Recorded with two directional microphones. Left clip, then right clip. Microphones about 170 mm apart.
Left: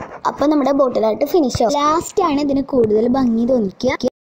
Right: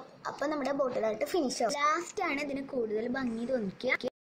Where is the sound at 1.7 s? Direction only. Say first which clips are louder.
Left 14 dB; 55° left (ahead or behind).